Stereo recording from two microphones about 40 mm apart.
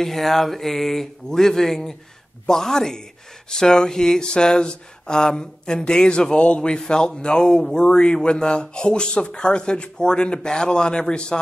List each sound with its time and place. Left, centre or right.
0.0 s speech: centre; by 11.3 s left